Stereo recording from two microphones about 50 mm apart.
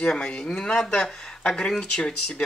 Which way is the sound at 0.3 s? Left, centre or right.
Centre.